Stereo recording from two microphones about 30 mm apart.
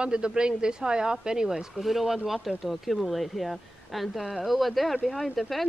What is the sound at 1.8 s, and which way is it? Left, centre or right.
Speech, centre.